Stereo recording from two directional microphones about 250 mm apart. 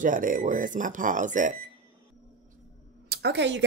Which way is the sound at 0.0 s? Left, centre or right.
Right.